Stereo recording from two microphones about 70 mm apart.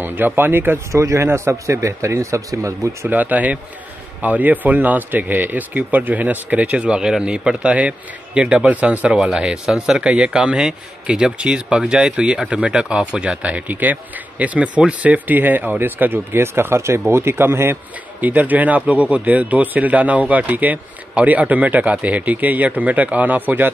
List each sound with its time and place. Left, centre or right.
0.0 s speech: right
1.0 s a man's voice: right
3.1 s speech: right
18.2 s speech: right